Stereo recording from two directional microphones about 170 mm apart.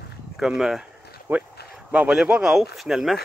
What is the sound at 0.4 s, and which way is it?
Speech, 5° right (ahead or behind).